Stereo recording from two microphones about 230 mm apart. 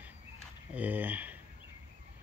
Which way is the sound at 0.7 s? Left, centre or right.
Centre.